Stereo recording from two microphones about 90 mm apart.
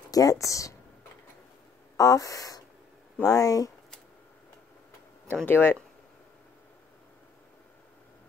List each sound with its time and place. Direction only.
0.1 s speech: 40° left (ahead or behind)
2.0 s speech: 40° left (ahead or behind)
5.3 s speech: 25° left (ahead or behind)